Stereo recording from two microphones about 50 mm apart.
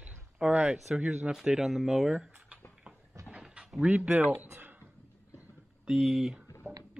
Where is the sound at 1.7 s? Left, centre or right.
Centre.